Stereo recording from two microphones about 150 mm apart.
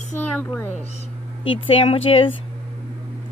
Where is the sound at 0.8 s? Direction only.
45° left (ahead or behind).